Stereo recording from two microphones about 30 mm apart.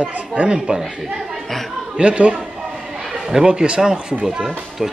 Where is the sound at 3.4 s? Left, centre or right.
Right.